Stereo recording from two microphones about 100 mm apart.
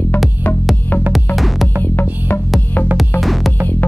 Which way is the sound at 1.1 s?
Centre (ahead or behind).